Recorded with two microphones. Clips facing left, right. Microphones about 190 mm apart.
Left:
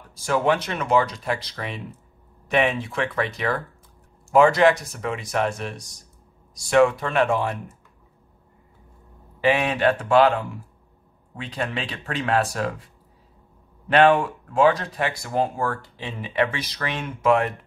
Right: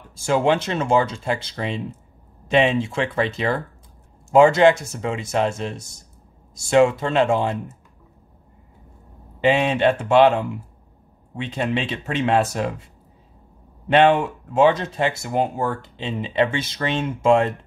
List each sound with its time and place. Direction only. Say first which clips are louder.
0.1 s speech: right 3 dB; 25° right (ahead or behind)
9.4 s speech: right 3 dB; 25° right (ahead or behind)